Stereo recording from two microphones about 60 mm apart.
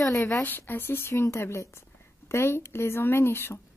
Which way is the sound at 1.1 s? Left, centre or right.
Left.